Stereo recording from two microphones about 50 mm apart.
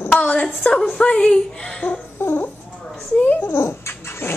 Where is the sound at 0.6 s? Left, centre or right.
Left.